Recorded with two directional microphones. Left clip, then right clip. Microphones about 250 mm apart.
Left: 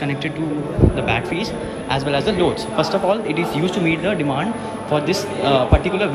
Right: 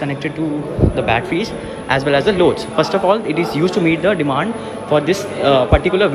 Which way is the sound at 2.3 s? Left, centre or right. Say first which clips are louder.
Right 4 dB; left.